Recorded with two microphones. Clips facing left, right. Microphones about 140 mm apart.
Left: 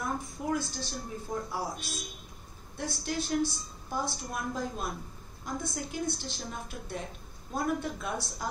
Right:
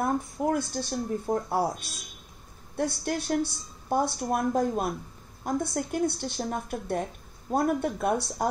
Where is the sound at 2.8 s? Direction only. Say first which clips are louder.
Right 6 dB; 55° right (ahead or behind).